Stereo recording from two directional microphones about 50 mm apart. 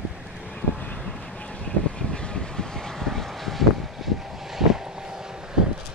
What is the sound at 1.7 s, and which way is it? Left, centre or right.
Vehicle, centre.